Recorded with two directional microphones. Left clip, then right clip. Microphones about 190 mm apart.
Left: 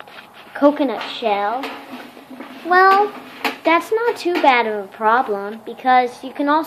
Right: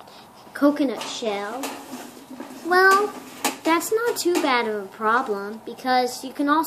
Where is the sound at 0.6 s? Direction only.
10° right (ahead or behind).